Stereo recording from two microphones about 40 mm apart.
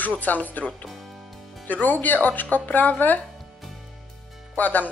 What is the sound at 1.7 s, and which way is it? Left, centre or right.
Speech, left.